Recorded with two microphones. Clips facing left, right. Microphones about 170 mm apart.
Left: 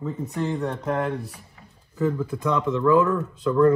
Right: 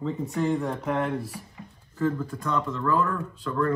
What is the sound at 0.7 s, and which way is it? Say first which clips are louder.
Speech: left 1 dB; centre (ahead or behind).